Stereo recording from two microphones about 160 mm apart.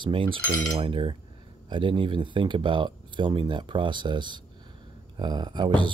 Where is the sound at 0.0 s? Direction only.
35° right (ahead or behind).